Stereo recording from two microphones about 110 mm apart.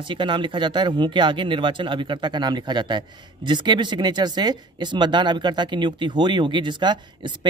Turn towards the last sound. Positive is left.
turn(degrees=-45)  # may be behind; listen again after turning